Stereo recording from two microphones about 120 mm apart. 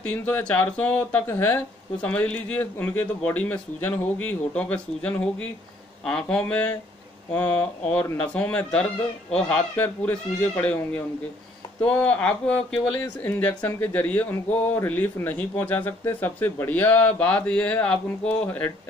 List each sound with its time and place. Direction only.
0.0 s speech: 15° left (ahead or behind)